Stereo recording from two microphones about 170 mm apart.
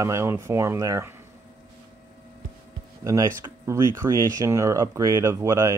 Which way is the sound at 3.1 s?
20° right (ahead or behind).